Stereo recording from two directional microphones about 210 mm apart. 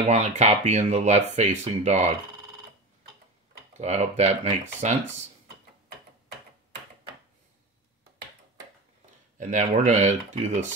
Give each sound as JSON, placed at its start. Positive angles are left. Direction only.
{"t": 0.0, "sound": "speech", "side_deg": -30}
{"t": 3.7, "sound": "speech", "side_deg": -35}
{"t": 9.4, "sound": "speech", "side_deg": -35}